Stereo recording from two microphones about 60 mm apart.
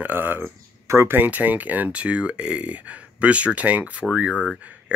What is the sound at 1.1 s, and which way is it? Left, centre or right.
Speech, right.